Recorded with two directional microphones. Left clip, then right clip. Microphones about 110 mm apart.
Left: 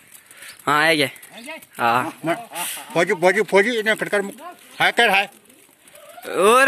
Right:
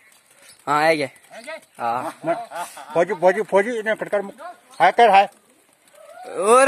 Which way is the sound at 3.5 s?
45° right (ahead or behind).